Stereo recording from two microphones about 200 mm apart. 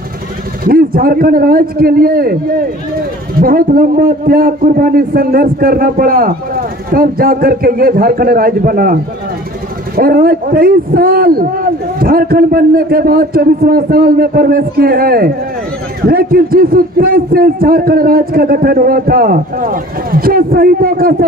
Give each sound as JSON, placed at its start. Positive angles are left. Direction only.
{"t": 0.7, "sound": "a man's voice", "side_deg": -45}
{"t": 9.9, "sound": "a man's voice", "side_deg": -45}